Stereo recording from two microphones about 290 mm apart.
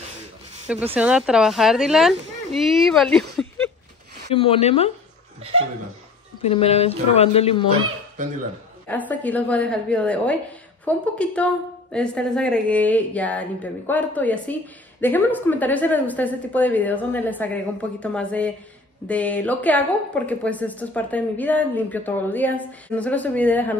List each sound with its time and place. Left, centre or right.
0.9 s a woman's voice: centre
4.4 s a woman's voice: centre
6.4 s a woman's voice: left
8.8 s a woman's voice: centre